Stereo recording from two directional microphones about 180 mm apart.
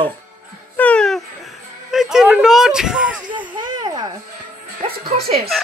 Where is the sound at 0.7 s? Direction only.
5° left (ahead or behind).